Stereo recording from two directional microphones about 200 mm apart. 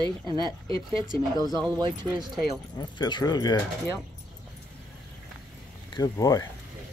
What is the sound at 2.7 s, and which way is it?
Speech, 20° left (ahead or behind).